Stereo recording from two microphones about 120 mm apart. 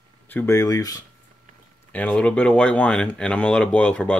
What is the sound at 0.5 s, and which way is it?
Speech, 30° left (ahead or behind).